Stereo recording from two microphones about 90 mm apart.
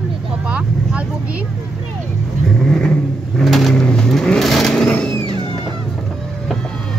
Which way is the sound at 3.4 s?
Centre (ahead or behind).